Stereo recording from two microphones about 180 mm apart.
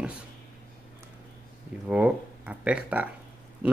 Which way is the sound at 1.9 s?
10° right (ahead or behind).